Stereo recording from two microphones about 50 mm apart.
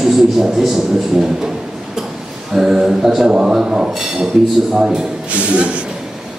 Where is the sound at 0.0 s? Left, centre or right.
Centre.